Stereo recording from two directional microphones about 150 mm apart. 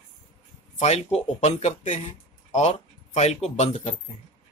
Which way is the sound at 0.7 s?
50° left (ahead or behind).